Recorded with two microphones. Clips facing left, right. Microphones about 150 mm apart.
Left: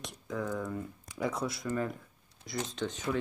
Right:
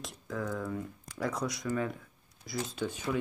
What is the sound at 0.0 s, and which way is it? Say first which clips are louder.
Speech: left 1 dB; centre (ahead or behind).